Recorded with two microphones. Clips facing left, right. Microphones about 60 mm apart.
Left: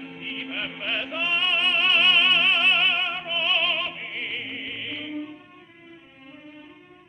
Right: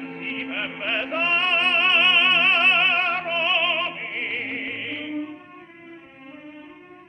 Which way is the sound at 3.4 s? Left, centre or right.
Right.